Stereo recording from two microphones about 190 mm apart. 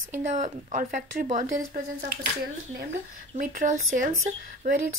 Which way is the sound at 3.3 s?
45° right (ahead or behind).